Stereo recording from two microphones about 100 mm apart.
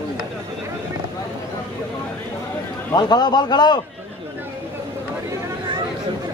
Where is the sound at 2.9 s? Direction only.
45° left (ahead or behind).